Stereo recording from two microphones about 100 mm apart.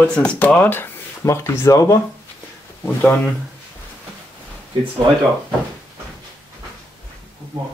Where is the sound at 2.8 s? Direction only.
15° left (ahead or behind).